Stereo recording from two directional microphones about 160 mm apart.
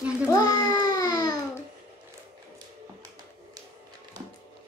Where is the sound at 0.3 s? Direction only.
25° left (ahead or behind).